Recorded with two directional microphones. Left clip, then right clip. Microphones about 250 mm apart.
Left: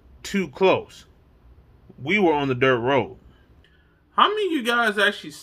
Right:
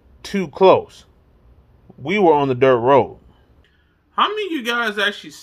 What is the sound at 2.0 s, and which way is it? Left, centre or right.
Speech, centre.